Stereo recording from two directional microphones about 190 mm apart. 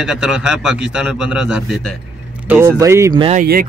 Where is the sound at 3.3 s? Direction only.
50° right (ahead or behind).